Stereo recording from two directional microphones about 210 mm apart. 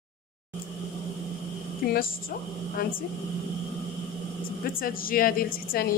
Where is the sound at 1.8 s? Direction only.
45° left (ahead or behind).